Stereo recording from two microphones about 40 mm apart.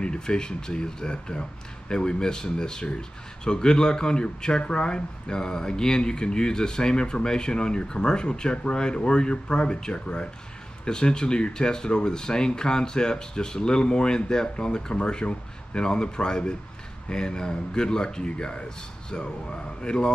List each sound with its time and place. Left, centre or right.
0.0 s speech: left